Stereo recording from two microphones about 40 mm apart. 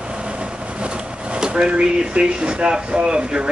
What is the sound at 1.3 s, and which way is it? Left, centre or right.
Vehicle, centre.